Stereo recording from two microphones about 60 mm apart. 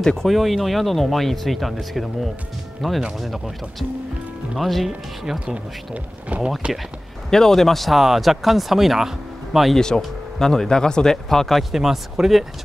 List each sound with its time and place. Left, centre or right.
0.0 s speech: centre
0.3 s speech: centre
4.6 s speech: centre
6.2 s speech: right
7.2 s speech: centre
9.8 s speech: centre